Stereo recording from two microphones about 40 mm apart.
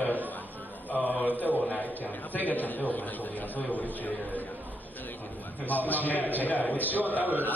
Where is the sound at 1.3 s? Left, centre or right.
Left.